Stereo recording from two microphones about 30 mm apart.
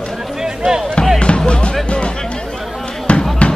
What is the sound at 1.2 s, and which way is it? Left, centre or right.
Music, left.